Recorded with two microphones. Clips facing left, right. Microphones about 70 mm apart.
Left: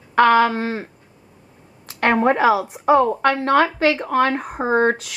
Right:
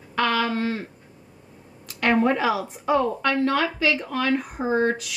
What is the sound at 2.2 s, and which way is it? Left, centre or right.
Speech, left.